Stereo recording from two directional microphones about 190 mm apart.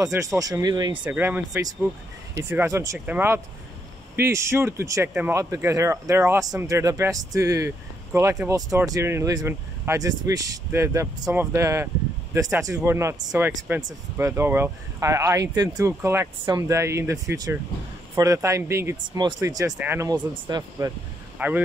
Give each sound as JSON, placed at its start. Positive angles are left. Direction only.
{"t": 0.0, "sound": "speech", "side_deg": -15}
{"t": 1.0, "sound": "speech", "side_deg": -10}
{"t": 21.4, "sound": "speech", "side_deg": -10}